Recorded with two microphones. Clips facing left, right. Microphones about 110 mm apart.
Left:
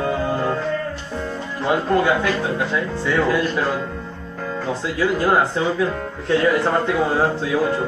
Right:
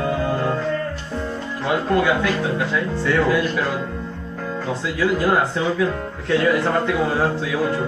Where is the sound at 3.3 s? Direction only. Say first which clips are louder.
Even; 30° left (ahead or behind).